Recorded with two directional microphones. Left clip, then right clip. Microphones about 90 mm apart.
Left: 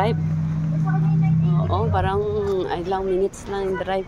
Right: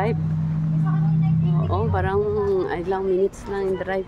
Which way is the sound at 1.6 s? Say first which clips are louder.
Left 2 dB; 40° right (ahead or behind).